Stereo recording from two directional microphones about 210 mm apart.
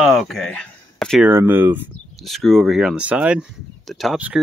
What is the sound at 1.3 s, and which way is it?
Speech, 10° right (ahead or behind).